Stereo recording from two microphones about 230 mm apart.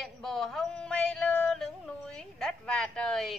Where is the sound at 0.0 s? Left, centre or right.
Centre.